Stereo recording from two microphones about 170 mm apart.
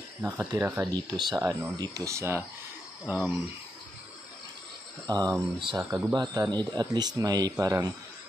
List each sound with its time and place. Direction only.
0.2 s speech: 15° right (ahead or behind)
5.0 s speech: 20° right (ahead or behind)
5.9 s speech: 10° right (ahead or behind)
6.3 s speech: 25° right (ahead or behind)